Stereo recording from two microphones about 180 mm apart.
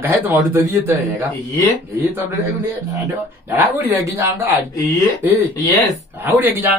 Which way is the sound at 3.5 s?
10° right (ahead or behind).